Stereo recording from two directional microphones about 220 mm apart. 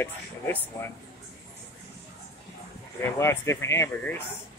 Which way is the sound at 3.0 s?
10° left (ahead or behind).